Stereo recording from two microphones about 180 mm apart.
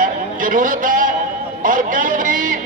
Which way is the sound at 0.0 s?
50° right (ahead or behind).